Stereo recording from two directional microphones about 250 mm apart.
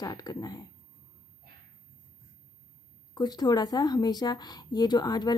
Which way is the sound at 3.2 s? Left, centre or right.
Centre.